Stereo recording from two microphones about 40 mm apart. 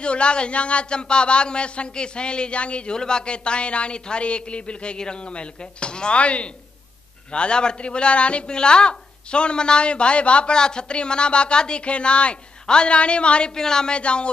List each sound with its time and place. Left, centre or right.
0.0 s a man's voice: left
13.6 s a woman's voice: centre
13.9 s a man's voice: left